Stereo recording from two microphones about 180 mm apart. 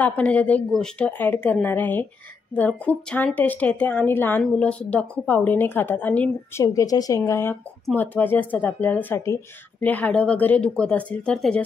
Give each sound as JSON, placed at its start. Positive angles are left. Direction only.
{"t": 0.0, "sound": "a woman's voice", "side_deg": 10}
{"t": 6.6, "sound": "a woman's voice", "side_deg": 20}